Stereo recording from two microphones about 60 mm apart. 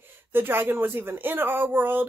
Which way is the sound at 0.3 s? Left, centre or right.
Right.